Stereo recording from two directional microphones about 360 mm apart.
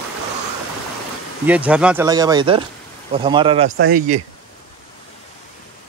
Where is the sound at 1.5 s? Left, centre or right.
Centre.